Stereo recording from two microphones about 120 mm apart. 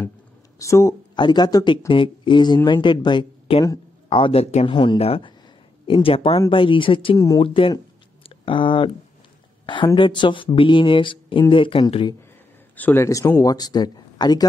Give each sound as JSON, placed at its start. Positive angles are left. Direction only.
{"t": 0.6, "sound": "a man's voice", "side_deg": 25}
{"t": 1.1, "sound": "speech", "side_deg": 35}
{"t": 4.6, "sound": "speech", "side_deg": 40}
{"t": 8.2, "sound": "a sound", "side_deg": 50}
{"t": 9.9, "sound": "speech", "side_deg": 45}
{"t": 12.7, "sound": "a man's voice", "side_deg": 15}